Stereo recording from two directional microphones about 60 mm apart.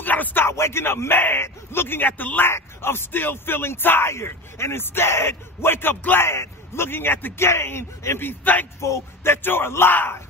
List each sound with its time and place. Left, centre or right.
0.0 s a sound: left
0.5 s speech: left
2.5 s speech: left
8.8 s speech: left